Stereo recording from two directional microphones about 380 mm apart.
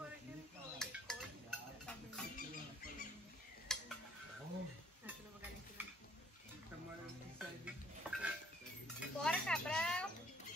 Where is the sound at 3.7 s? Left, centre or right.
Centre.